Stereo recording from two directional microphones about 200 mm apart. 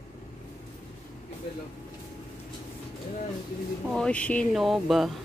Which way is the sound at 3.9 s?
5° left (ahead or behind).